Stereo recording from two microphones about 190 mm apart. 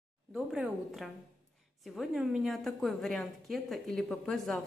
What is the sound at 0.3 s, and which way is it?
A woman's voice, 5° right (ahead or behind).